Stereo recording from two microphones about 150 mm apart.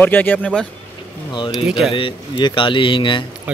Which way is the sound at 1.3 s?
35° left (ahead or behind).